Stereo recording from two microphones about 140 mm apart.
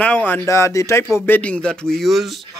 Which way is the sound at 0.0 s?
10° left (ahead or behind).